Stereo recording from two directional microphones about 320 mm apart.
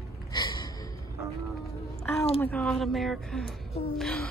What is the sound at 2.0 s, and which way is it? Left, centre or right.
Speech, centre.